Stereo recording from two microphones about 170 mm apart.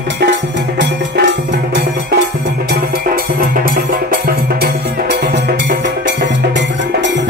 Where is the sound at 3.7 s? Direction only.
60° right (ahead or behind).